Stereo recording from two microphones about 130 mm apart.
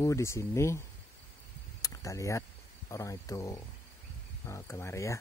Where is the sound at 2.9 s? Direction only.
25° left (ahead or behind).